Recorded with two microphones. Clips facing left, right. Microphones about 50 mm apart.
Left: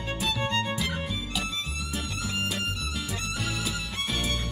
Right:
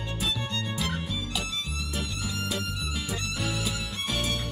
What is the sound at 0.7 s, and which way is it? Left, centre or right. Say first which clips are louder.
Music: left 1 dB; centre.